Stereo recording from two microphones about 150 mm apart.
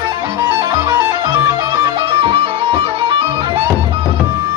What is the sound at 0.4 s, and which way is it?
Music, 25° right (ahead or behind).